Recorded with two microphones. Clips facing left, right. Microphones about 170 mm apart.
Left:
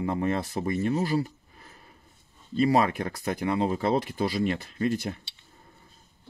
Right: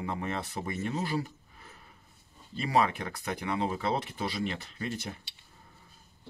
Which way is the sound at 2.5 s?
40° left (ahead or behind).